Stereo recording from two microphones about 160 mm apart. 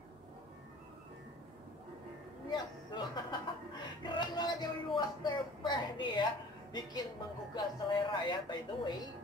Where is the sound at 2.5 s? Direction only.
25° left (ahead or behind).